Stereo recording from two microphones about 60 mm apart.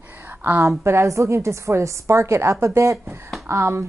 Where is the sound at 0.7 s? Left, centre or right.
Right.